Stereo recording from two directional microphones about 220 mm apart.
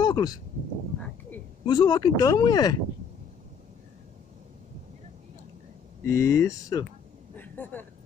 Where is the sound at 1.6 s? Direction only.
20° left (ahead or behind).